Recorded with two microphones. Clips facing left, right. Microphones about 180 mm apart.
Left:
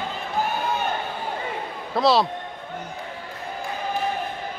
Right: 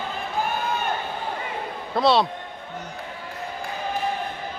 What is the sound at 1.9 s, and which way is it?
Speech, centre (ahead or behind).